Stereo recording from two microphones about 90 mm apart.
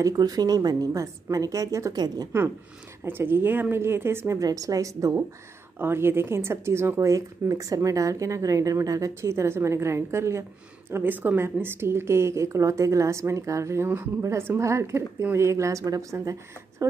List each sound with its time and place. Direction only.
0.0 s a woman's voice: 45° right (ahead or behind)
3.0 s a woman's voice: 25° right (ahead or behind)
4.4 s speech: 40° right (ahead or behind)
5.8 s a woman's voice: 25° right (ahead or behind)